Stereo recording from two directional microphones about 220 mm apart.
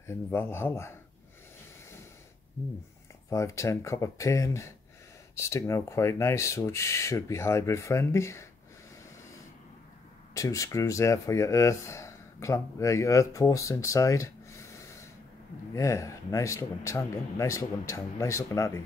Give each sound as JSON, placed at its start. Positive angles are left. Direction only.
{"t": 0.0, "sound": "speech", "side_deg": 10}
{"t": 3.3, "sound": "speech", "side_deg": 15}
{"t": 10.3, "sound": "speech", "side_deg": 15}